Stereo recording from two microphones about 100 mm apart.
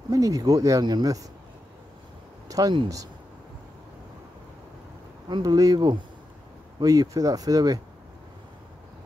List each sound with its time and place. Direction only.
0.1 s speech: 35° right (ahead or behind)
2.4 s speech: 35° right (ahead or behind)
5.3 s speech: 40° right (ahead or behind)